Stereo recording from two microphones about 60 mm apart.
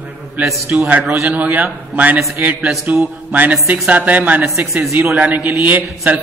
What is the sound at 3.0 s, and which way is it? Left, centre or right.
A man's voice, right.